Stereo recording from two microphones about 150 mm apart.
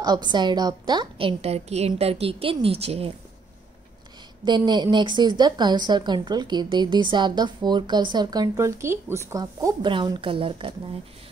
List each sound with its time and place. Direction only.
0.0 s a woman's voice: 30° right (ahead or behind)
4.5 s a woman's voice: 30° right (ahead or behind)